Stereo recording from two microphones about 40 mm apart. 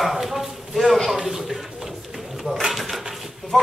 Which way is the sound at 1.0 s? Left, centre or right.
Centre.